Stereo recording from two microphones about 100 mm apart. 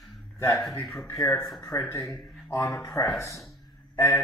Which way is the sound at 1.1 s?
30° left (ahead or behind).